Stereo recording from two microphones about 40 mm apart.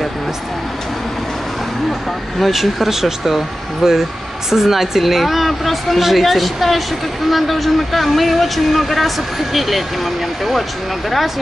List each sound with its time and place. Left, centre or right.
2.4 s speech: centre